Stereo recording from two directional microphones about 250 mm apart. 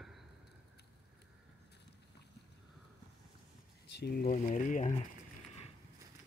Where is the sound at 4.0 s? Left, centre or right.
Left.